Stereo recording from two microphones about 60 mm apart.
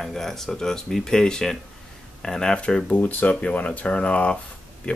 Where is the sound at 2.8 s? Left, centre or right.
Left.